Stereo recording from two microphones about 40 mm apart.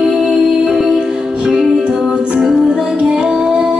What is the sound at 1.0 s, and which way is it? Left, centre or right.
Music, centre.